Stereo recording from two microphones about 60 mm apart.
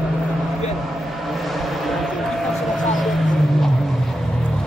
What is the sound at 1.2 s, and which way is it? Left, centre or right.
Vehicle, centre.